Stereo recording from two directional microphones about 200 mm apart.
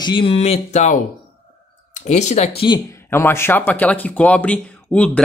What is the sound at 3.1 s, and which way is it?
Speech, 10° left (ahead or behind).